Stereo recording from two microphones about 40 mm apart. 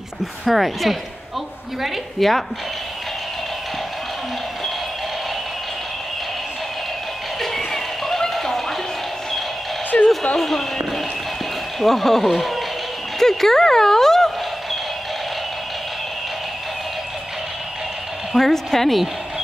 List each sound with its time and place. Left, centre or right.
0.5 s speech: centre
2.1 s speech: centre
7.5 s music: centre
9.9 s a sound: left
10.3 s speech: centre
11.8 s speech: centre
13.2 s a sound: centre
18.3 s speech: centre